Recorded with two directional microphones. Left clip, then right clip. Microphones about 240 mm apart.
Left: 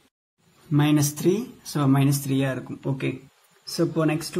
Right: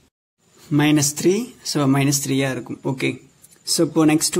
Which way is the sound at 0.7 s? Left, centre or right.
Right.